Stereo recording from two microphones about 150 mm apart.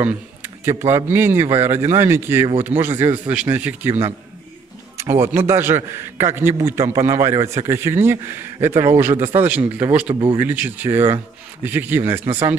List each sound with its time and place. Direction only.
0.0 s a man's voice: 15° right (ahead or behind)
4.9 s a man's voice: 15° right (ahead or behind)